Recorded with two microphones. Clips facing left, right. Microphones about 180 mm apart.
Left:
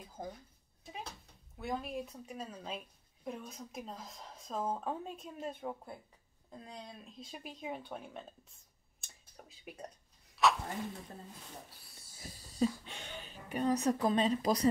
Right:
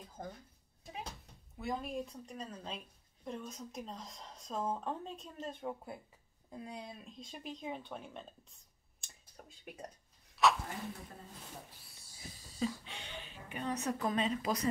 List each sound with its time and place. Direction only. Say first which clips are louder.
0.2 s speech: left 2 dB; 5° left (ahead or behind)
1.6 s speech: even; centre (ahead or behind)
6.5 s speech: right 3 dB; 10° right (ahead or behind)
9.0 s a sound: even; centre (ahead or behind)
12.5 s a woman's voice: left 5 dB; 45° left (ahead or behind)